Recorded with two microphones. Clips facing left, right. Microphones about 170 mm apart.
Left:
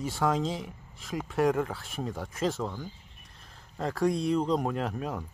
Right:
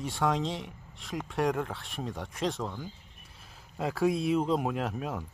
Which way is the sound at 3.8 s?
5° right (ahead or behind).